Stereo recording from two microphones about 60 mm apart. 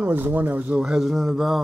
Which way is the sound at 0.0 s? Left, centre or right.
Right.